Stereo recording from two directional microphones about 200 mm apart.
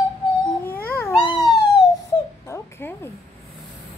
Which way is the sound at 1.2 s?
20° left (ahead or behind).